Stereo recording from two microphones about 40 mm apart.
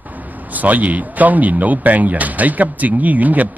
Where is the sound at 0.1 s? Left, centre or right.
Right.